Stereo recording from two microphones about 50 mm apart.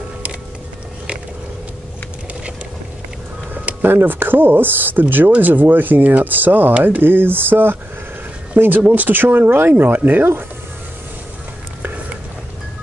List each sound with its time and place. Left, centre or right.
3.8 s speech: right
9.9 s speech: right